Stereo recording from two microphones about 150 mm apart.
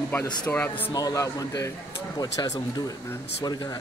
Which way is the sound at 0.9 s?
25° left (ahead or behind).